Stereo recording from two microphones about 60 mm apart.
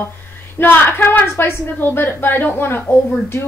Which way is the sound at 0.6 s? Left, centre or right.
Left.